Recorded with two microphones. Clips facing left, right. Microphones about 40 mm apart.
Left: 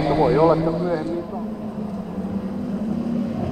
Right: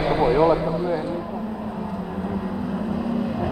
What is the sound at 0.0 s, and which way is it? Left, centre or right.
Vehicle, right.